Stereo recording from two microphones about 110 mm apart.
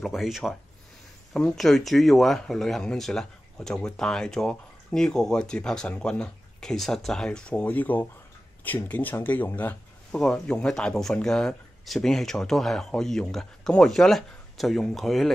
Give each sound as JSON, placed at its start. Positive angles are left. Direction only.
{"t": 0.0, "sound": "speech", "side_deg": 0}
{"t": 10.1, "sound": "speech", "side_deg": 5}